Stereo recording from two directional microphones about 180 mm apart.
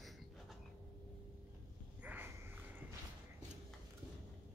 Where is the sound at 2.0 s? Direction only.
10° right (ahead or behind).